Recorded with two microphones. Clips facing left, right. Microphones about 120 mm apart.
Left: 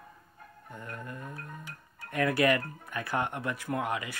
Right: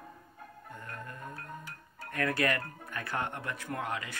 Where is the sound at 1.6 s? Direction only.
15° left (ahead or behind).